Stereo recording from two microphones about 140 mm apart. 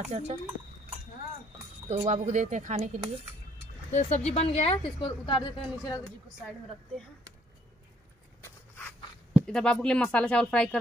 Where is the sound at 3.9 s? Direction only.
55° left (ahead or behind); by 5.5 s 35° left (ahead or behind).